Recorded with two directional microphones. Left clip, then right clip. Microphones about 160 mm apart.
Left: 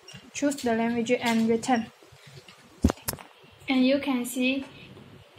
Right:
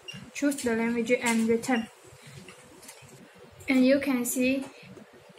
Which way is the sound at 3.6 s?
50° left (ahead or behind).